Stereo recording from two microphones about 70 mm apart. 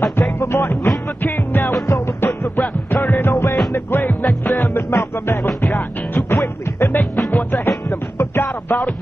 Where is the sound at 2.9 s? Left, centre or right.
Left.